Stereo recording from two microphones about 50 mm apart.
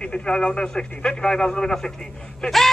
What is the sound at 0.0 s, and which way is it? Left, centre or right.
A man's voice, centre.